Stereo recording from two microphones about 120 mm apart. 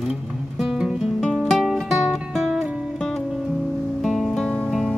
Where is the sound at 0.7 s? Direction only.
5° right (ahead or behind).